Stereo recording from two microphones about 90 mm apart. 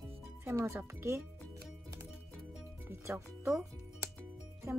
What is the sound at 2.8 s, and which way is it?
Speech, 25° right (ahead or behind).